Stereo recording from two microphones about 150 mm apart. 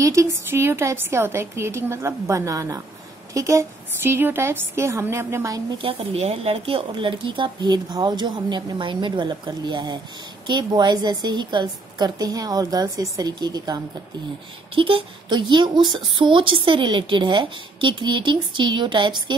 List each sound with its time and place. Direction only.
0.0 s a woman's voice: 20° right (ahead or behind)
5.8 s a woman's voice: 40° right (ahead or behind)
14.8 s a woman's voice: 35° right (ahead or behind)